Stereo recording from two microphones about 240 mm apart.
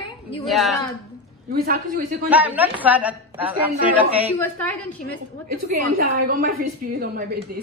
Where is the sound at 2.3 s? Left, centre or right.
Centre.